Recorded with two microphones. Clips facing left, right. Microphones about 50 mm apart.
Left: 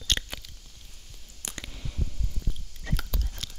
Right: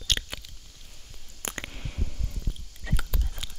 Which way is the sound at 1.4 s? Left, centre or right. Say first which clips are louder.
Right 4 dB; right.